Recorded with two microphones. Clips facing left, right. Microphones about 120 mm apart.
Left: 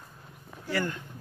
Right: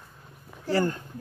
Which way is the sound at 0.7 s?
35° right (ahead or behind).